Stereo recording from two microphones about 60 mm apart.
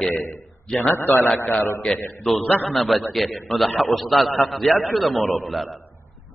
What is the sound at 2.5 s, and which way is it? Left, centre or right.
Speech, left.